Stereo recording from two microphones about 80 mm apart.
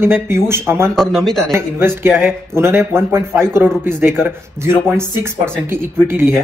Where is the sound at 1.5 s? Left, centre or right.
Right.